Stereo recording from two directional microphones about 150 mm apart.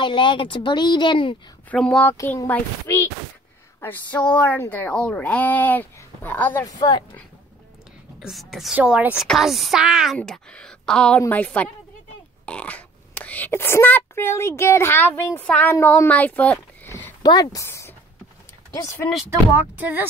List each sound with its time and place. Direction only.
0.0 s speech: 35° left (ahead or behind)
1.7 s speech: 5° left (ahead or behind)
6.8 s speech: 30° left (ahead or behind)
8.2 s a woman's voice: centre (ahead or behind)
10.1 s speech: 5° left (ahead or behind)
17.2 s speech: 25° left (ahead or behind)
19.5 s speech: 10° right (ahead or behind)